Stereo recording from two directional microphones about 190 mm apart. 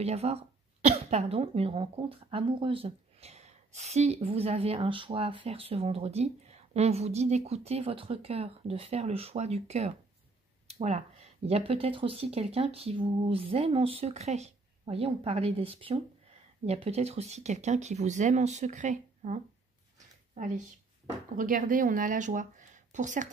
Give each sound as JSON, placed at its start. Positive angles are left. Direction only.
{"t": 0.0, "sound": "speech", "side_deg": -35}